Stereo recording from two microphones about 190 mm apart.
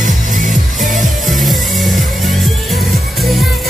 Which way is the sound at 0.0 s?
45° right (ahead or behind).